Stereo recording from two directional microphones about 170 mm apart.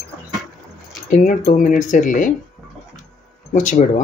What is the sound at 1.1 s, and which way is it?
Speech, 50° left (ahead or behind).